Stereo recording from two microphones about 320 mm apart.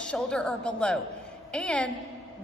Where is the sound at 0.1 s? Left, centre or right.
Centre.